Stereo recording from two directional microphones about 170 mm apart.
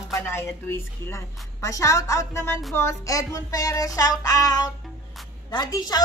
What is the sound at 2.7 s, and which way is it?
Music, 20° left (ahead or behind).